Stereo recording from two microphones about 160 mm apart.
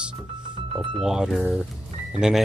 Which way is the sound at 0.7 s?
5° right (ahead or behind).